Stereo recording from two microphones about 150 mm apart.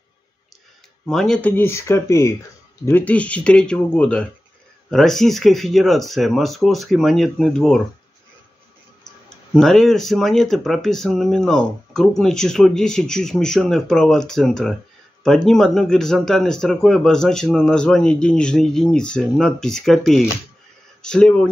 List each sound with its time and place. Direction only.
1.0 s speech: 5° left (ahead or behind)
9.5 s speech: 5° left (ahead or behind)